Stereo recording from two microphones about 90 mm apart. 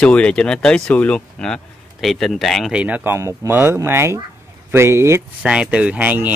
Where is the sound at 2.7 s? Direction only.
15° right (ahead or behind).